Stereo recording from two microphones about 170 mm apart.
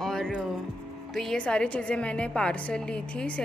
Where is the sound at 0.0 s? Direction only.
5° left (ahead or behind).